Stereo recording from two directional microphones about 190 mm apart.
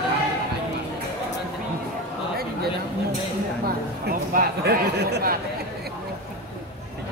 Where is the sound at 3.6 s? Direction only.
50° right (ahead or behind).